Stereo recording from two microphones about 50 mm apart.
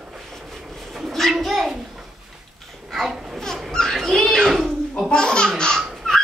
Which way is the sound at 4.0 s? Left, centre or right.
Centre.